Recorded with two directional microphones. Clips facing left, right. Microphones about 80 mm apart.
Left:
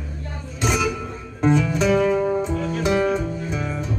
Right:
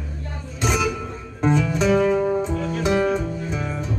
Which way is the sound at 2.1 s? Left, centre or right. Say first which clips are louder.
Even; centre.